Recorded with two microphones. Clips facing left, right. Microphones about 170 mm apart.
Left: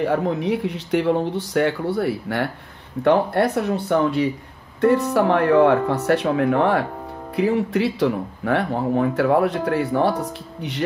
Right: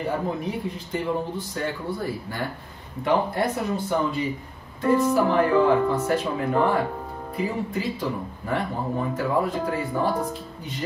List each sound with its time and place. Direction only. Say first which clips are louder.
0.0 s speech: left 6 dB; 75° left (ahead or behind)